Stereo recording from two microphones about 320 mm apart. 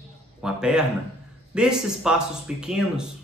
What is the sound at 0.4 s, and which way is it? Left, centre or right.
A man's voice, centre.